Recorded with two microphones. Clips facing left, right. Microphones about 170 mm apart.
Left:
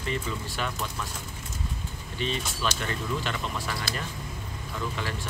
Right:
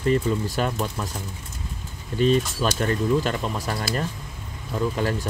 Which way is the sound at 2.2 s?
45° right (ahead or behind).